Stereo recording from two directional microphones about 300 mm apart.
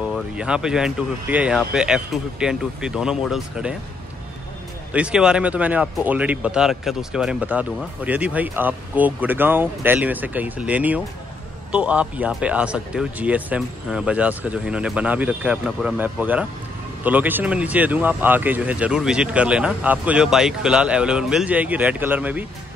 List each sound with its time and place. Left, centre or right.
0.0 s speech: centre
4.9 s speech: centre